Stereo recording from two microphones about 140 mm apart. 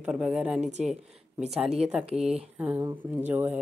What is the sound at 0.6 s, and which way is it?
Speech, 55° right (ahead or behind).